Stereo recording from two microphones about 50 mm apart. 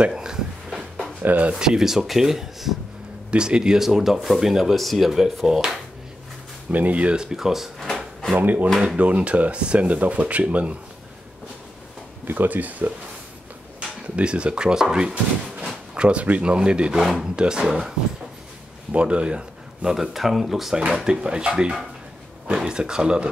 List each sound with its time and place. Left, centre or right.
0.1 s a sound: centre
1.2 s speech: right
1.5 s speech: centre
6.7 s speech: right
7.2 s speech: centre
8.4 s speech: right
12.3 s speech: right
13.7 s speech: right
17.0 s speech: centre
18.9 s speech: right
19.9 s speech: centre
21.0 s speech: centre